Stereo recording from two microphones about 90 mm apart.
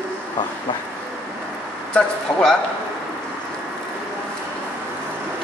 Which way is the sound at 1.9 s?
10° left (ahead or behind).